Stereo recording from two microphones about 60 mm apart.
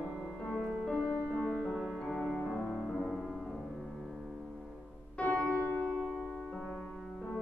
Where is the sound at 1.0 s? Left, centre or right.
Centre.